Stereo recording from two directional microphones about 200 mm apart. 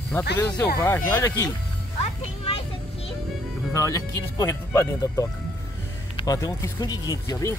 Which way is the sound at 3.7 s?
15° left (ahead or behind).